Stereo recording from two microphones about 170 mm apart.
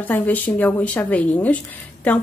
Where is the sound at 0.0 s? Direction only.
10° left (ahead or behind).